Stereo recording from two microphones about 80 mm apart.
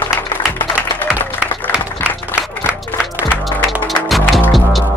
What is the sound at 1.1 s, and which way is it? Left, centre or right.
Music, centre.